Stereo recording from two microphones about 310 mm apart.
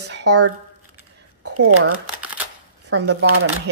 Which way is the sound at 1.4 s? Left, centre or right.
Right.